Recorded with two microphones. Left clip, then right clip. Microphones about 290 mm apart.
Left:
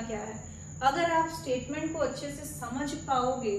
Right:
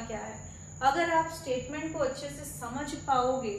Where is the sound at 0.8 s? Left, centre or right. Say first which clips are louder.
Even; centre.